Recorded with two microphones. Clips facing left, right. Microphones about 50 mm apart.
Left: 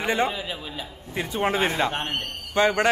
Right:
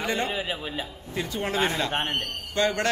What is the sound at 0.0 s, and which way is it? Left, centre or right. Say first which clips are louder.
A man's voice: left 3 dB; centre.